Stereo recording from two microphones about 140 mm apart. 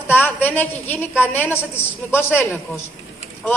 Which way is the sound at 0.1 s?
15° left (ahead or behind).